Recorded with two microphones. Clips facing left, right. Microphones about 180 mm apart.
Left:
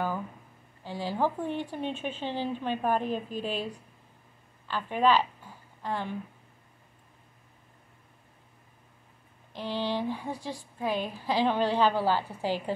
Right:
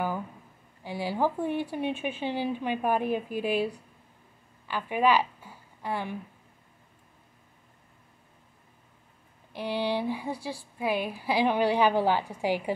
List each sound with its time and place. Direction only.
0.8 s speech: 10° right (ahead or behind)
4.6 s a sound: 10° right (ahead or behind)
9.5 s speech: 10° right (ahead or behind)